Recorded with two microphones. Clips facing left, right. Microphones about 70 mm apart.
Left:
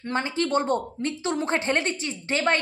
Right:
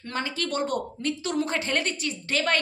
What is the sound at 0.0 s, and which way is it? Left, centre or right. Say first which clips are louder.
A woman's voice: left 4 dB; left.